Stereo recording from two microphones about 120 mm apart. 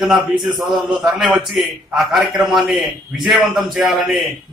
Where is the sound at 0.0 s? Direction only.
Centre (ahead or behind).